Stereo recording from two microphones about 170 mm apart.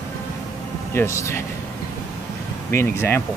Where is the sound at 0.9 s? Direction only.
15° left (ahead or behind).